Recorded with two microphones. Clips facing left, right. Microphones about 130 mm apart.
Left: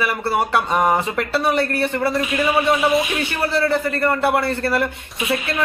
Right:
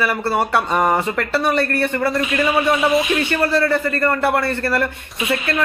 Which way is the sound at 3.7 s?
15° left (ahead or behind).